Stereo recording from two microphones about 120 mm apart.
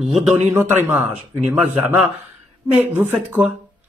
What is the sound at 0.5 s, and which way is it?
Speech, 20° right (ahead or behind).